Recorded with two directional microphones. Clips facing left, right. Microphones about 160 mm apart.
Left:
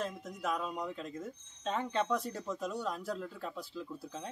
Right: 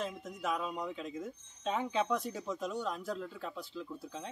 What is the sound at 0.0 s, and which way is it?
Speech, centre (ahead or behind).